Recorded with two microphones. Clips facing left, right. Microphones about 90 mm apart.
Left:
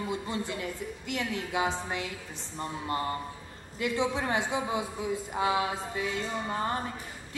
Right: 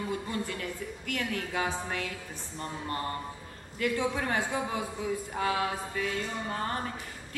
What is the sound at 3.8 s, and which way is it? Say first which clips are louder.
A woman's voice: even; 20° left (ahead or behind).